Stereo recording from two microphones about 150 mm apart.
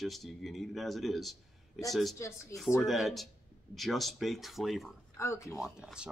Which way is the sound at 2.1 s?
20° left (ahead or behind).